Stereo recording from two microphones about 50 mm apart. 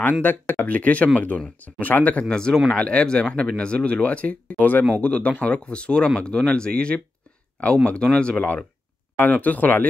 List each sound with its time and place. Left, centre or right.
0.2 s speech: left
2.2 s speech: centre; by 9.8 s left